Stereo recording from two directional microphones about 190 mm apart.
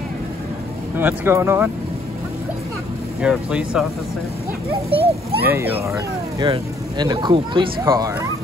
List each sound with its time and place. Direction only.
0.9 s speech: 10° right (ahead or behind)
3.2 s speech: 5° right (ahead or behind)
4.6 s speech: 30° right (ahead or behind)
5.5 s speech: 15° right (ahead or behind)